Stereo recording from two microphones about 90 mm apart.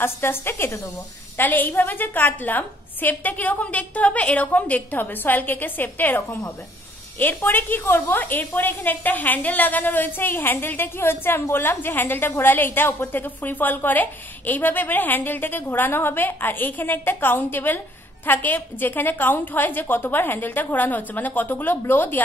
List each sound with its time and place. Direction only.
0.0 s a woman's voice: 25° left (ahead or behind)
7.4 s a woman's voice: 25° left (ahead or behind)